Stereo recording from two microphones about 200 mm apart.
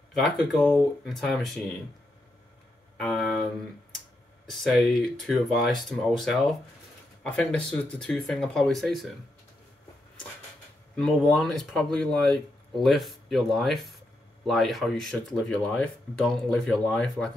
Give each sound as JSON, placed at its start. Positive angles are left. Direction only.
{"t": 0.2, "sound": "speech", "side_deg": 0}
{"t": 3.0, "sound": "speech", "side_deg": 0}
{"t": 4.5, "sound": "speech", "side_deg": 0}
{"t": 11.0, "sound": "speech", "side_deg": 0}